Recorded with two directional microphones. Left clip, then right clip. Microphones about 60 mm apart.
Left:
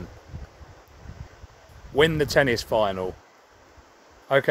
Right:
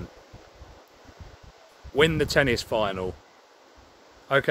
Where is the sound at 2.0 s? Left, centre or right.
Centre.